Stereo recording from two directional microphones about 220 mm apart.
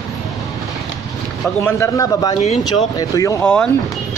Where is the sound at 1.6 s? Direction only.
15° left (ahead or behind).